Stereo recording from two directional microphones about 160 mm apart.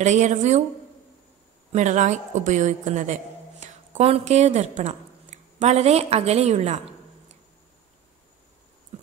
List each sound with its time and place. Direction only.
0.0 s a woman's voice: 45° right (ahead or behind)
1.7 s a woman's voice: 50° right (ahead or behind)